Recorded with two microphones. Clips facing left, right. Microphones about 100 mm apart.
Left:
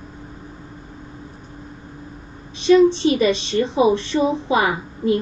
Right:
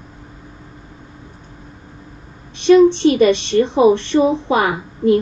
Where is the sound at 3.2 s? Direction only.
60° right (ahead or behind).